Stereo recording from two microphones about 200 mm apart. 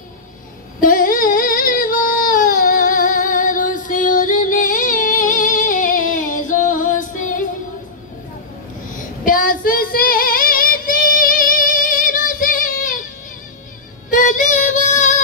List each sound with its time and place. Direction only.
0.7 s a sound: 45° left (ahead or behind)
8.9 s child singing: 45° left (ahead or behind)
14.1 s child singing: 40° left (ahead or behind)